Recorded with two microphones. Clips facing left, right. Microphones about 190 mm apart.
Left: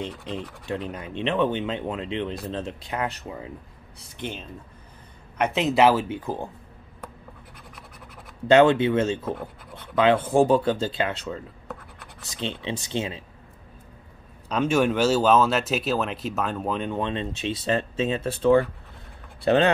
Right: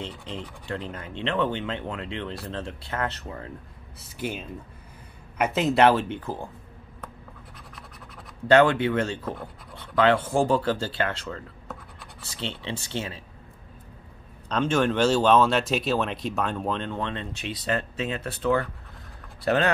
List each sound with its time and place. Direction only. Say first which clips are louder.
0.2 s speech: left 3 dB; 15° left (ahead or behind)
4.2 s speech: right 2 dB; 5° right (ahead or behind); by 6.4 s 10° left (ahead or behind)
8.5 s speech: left 2 dB; 20° left (ahead or behind)
14.5 s speech: left 2 dB; 10° left (ahead or behind); by 19.7 s 25° left (ahead or behind)